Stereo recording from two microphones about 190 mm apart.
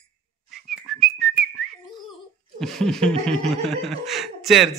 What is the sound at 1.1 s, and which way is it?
Whistling, 70° right (ahead or behind).